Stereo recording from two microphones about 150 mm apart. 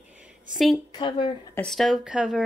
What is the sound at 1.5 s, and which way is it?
Speech, 5° left (ahead or behind).